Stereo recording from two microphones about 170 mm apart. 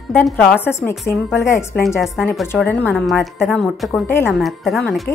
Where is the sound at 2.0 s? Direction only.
Centre (ahead or behind).